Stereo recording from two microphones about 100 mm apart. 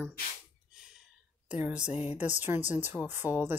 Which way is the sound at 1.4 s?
15° right (ahead or behind).